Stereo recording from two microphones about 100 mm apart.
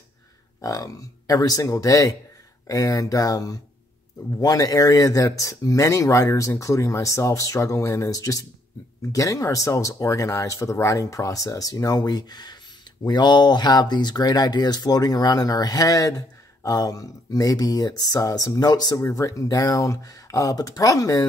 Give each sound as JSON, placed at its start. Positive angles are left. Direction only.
{"t": 0.6, "sound": "speech", "side_deg": 35}